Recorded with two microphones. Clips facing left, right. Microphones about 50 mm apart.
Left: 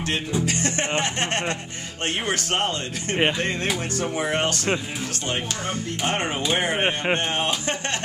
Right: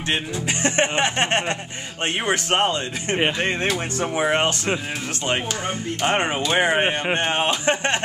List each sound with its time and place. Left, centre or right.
0.5 s speech: right
3.2 s speech: centre
4.0 s speech: right
6.0 s speech: right